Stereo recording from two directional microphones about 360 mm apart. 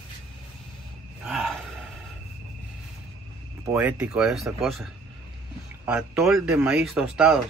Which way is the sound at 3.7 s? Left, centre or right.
Centre.